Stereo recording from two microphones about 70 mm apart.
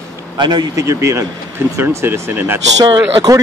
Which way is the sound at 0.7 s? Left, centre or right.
Right.